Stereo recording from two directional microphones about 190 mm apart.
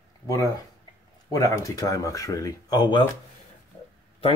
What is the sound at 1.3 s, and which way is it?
Speech, 20° left (ahead or behind).